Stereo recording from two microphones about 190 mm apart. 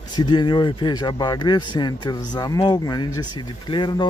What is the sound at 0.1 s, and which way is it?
Speech, 25° left (ahead or behind).